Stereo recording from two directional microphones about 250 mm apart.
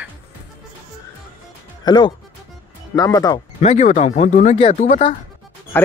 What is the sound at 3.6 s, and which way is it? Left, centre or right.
Speech, left.